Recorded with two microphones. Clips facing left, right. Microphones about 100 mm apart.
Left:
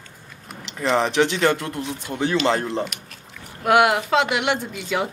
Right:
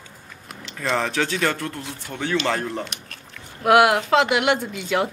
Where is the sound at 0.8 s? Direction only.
20° left (ahead or behind).